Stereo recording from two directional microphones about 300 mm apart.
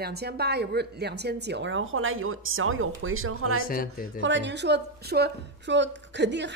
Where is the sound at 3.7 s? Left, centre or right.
Left.